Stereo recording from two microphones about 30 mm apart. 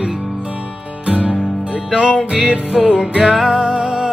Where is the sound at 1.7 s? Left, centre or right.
Right.